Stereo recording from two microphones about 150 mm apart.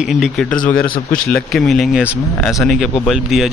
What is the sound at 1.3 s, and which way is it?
A man's voice, 5° left (ahead or behind).